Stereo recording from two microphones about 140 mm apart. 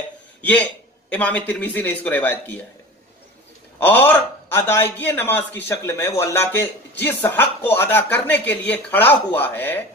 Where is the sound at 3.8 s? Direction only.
15° left (ahead or behind).